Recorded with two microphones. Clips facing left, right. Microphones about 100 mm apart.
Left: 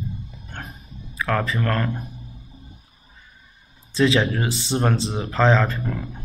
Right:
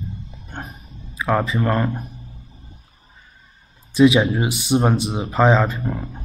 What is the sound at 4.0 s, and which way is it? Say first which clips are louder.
Speech: right 5 dB; 10° right (ahead or behind).